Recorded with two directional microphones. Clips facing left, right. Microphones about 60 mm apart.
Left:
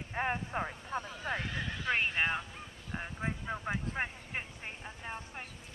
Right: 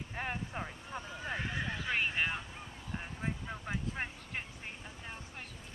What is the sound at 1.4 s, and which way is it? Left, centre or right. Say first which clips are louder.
Horse: right 1 dB; centre.